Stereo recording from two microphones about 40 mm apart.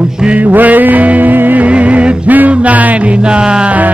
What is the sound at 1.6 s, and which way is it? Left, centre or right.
Music, right.